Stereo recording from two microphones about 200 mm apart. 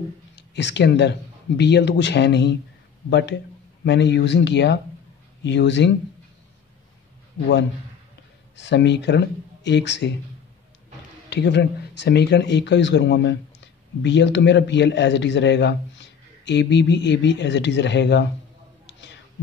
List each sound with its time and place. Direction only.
0.4 s speech: 60° left (ahead or behind)
8.5 s speech: 60° left (ahead or behind)
11.2 s speech: 60° left (ahead or behind)
18.9 s a sound: 60° left (ahead or behind)